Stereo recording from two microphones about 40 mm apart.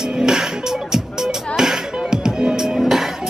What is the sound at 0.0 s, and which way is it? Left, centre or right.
Music, centre.